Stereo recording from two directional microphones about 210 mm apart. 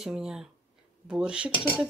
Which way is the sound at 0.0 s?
Centre (ahead or behind).